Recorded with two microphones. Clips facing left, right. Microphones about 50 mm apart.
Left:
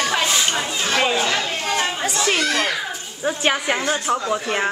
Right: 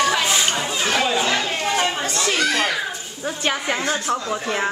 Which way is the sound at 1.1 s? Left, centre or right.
Centre.